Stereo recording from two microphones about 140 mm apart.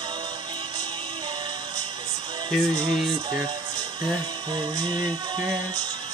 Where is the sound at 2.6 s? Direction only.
30° right (ahead or behind).